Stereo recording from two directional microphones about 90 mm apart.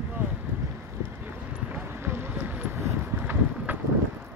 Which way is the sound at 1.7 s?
20° right (ahead or behind).